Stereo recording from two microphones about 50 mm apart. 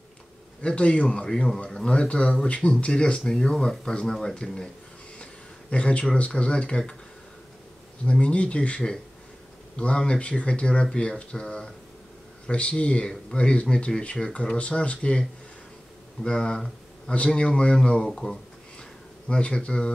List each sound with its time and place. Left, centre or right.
0.6 s speech: left
8.0 s speech: left